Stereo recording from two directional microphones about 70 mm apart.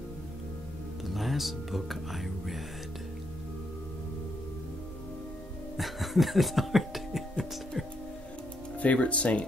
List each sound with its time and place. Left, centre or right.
1.0 s speech: centre
5.8 s music: centre
8.7 s speech: centre